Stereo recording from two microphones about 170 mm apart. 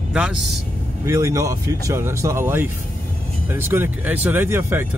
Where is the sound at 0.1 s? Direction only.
5° right (ahead or behind).